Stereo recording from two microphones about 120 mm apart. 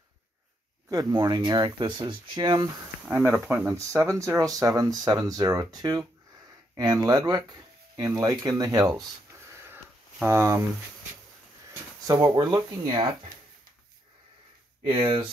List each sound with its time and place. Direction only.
0.8 s speech: 30° right (ahead or behind)
3.3 s speech: 10° right (ahead or behind)
3.7 s speech: 25° right (ahead or behind)
10.2 s speech: 20° right (ahead or behind)
12.4 s speech: 35° right (ahead or behind)
14.9 s speech: 40° right (ahead or behind)